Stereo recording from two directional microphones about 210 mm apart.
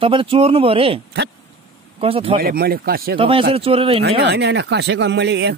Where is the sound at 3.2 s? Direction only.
25° right (ahead or behind).